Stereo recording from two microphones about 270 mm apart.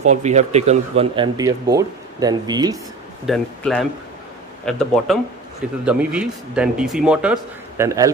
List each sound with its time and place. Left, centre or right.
0.1 s speech: right
3.3 s speech: centre